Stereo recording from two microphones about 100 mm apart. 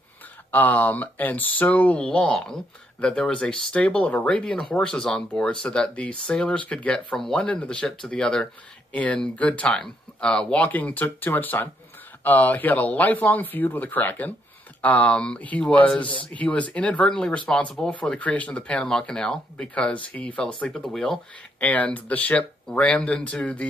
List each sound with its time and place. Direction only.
0.5 s speech: 15° left (ahead or behind)